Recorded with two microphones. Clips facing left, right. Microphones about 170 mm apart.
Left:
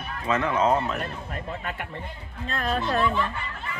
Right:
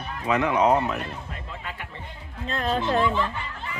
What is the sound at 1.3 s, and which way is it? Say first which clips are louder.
Speech: left 4 dB; 55° left (ahead or behind).